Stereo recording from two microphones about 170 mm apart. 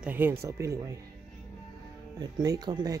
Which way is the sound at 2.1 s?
25° right (ahead or behind).